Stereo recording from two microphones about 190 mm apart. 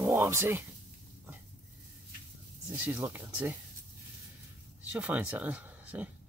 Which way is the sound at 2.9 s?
10° right (ahead or behind).